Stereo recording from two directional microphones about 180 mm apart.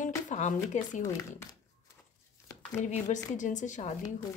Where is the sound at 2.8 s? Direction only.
45° left (ahead or behind).